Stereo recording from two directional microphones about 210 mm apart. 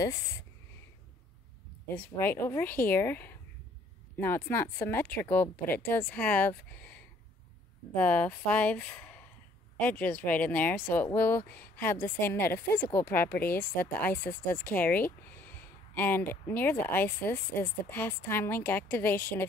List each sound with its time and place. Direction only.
2.0 s speech: 10° left (ahead or behind)